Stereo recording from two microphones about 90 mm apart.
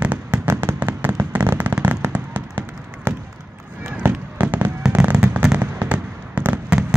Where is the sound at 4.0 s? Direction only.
20° right (ahead or behind).